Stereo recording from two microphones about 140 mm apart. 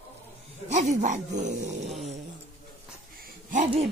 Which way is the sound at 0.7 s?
60° right (ahead or behind).